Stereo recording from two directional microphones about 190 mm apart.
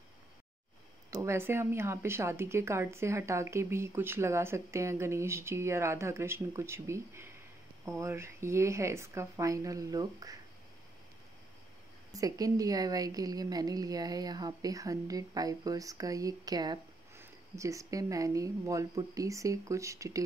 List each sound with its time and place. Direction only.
1.1 s a woman's voice: 10° right (ahead or behind)
12.1 s a woman's voice: 20° right (ahead or behind)